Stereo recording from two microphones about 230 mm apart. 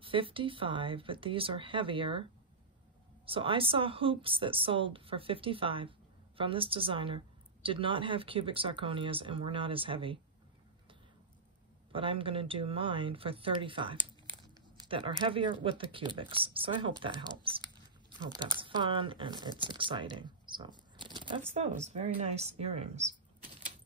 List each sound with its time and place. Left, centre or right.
0.0 s a woman's voice: right
3.3 s a woman's voice: right
11.9 s a woman's voice: right
18.3 s a woman's voice: centre
20.9 s a sound: centre
21.5 s a woman's voice: right